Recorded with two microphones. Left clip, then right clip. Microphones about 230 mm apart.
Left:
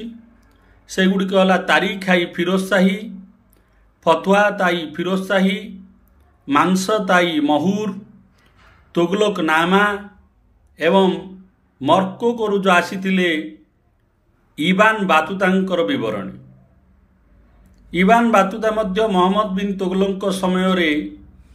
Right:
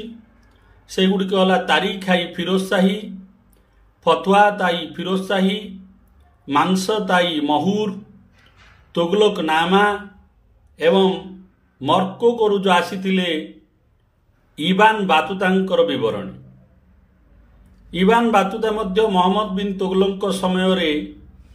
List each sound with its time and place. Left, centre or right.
0.8 s a man's voice: centre
8.9 s a man's voice: centre
14.6 s a man's voice: centre
17.9 s a man's voice: centre